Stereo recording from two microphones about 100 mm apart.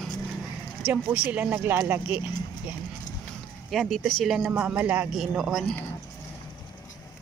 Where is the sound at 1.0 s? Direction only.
15° right (ahead or behind).